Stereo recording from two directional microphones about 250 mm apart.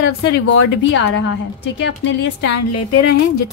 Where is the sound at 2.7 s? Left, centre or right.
Left.